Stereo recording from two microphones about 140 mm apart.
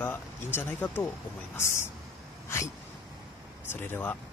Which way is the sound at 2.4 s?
20° left (ahead or behind).